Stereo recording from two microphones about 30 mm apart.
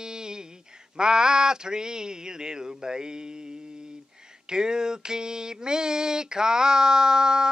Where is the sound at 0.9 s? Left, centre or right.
Right.